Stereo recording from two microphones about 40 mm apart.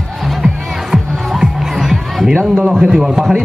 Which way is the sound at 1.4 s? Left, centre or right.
Centre.